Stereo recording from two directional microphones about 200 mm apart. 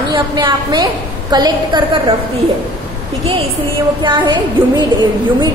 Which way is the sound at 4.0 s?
25° right (ahead or behind).